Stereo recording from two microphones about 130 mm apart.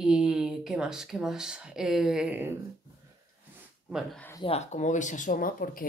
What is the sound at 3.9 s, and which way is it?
Speech, 5° right (ahead or behind).